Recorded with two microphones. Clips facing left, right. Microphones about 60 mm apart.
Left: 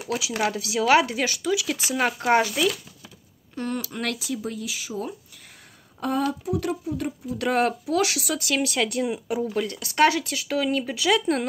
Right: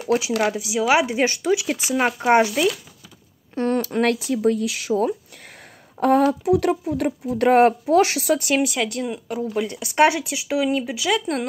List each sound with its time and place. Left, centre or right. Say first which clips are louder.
0.4 s speech: right 3 dB; centre
1.1 s speech: right 5 dB; right
3.5 s speech: right 9 dB; right
5.9 s speech: right 8 dB; right
6.4 s speech: right 8 dB; right
7.3 s speech: right 8 dB; right
8.6 s speech: even; centre
9.5 s speech: right 2 dB; centre
9.8 s speech: right 3 dB; right; by 11.4 s centre